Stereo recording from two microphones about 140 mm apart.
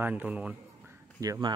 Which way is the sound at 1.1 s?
25° right (ahead or behind).